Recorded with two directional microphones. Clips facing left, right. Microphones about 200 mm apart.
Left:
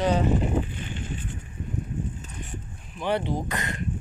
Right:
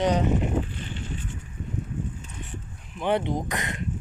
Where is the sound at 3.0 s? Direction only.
20° right (ahead or behind).